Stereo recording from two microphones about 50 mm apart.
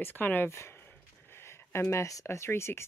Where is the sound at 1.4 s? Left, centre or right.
Left.